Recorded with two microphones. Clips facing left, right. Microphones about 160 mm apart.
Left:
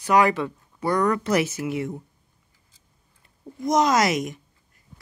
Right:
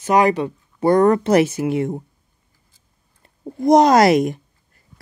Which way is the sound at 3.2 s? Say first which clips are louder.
Right 8 dB; 50° right (ahead or behind).